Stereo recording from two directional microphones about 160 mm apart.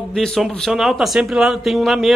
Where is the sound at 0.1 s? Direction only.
Centre (ahead or behind).